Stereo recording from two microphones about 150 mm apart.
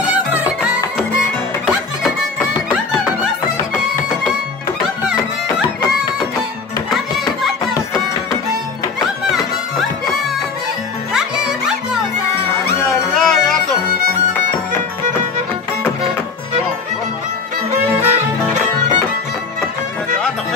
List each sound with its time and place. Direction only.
0.0 s music: 10° right (ahead or behind)
11.1 s music: 5° right (ahead or behind)
13.2 s music: 5° left (ahead or behind)
17.6 s music: 45° right (ahead or behind)